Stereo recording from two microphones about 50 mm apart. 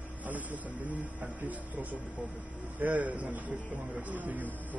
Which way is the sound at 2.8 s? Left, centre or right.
Right.